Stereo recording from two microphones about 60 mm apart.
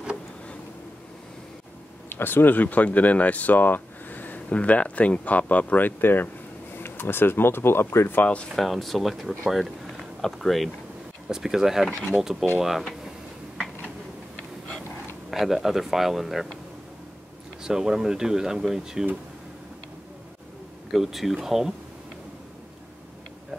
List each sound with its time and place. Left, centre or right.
2.0 s speech: left
8.5 s speech: centre
15.3 s speech: centre
17.6 s speech: centre
20.9 s speech: centre